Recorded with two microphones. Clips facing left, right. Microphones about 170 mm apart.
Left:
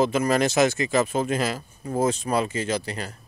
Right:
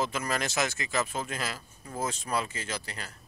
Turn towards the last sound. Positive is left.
turn(degrees=20)  # may be behind; listen again after turning